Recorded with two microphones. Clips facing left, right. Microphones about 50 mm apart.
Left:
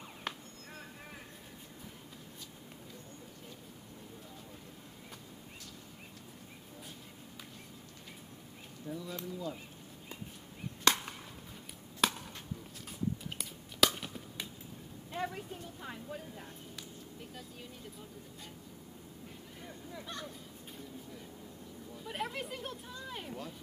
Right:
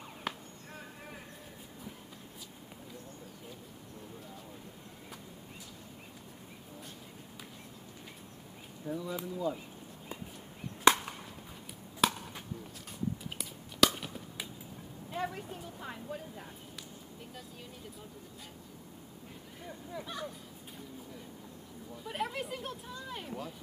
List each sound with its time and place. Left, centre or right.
0.3 s chop: centre
8.8 s speech: centre
10.9 s chop: centre
12.0 s chop: centre
13.4 s chop: centre
15.0 s vehicle: centre
19.9 s a sound: centre
21.9 s speech: centre